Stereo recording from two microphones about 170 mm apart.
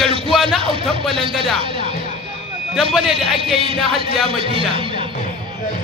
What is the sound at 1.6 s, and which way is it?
Music, 35° right (ahead or behind).